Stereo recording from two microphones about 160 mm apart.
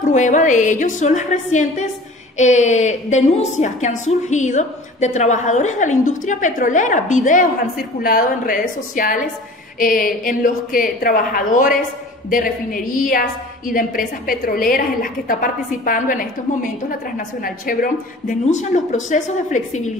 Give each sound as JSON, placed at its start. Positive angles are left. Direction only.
{"t": 0.0, "sound": "a woman's voice", "side_deg": 50}
{"t": 17.4, "sound": "a woman's voice", "side_deg": 60}